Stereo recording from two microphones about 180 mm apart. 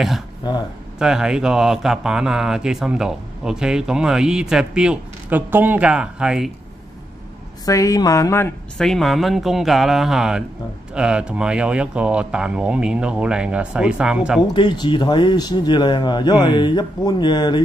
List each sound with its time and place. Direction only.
0.5 s speech: 25° left (ahead or behind)
0.9 s speech: 5° right (ahead or behind)
7.6 s speech: 20° left (ahead or behind); by 14.4 s 5° right (ahead or behind)
14.5 s speech: 25° left (ahead or behind)